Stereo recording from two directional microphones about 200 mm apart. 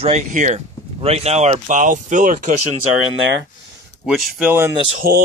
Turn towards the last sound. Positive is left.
turn(degrees=-50)  # may be behind; listen again after turning